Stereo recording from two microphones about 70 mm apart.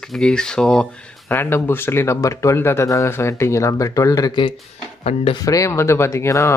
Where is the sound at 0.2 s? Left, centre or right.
Centre.